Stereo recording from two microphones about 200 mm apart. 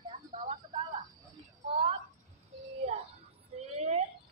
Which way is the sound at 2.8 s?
30° right (ahead or behind).